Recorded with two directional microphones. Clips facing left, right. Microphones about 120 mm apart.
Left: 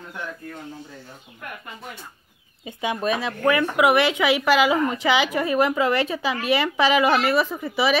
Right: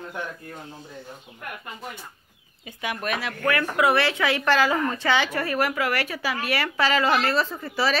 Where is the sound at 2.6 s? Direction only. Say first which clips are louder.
Left 5 dB; 25° left (ahead or behind).